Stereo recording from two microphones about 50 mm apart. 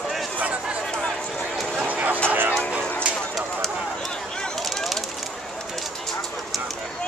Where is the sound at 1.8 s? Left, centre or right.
Right.